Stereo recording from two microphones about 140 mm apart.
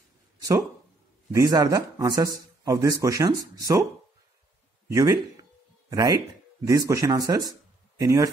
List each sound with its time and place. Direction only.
0.4 s a sound: 20° right (ahead or behind)
1.3 s speech: 25° right (ahead or behind)
4.9 s speech: 25° right (ahead or behind)